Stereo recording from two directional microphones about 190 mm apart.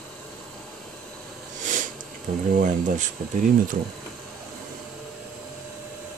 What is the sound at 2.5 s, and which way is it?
Speech, 45° right (ahead or behind).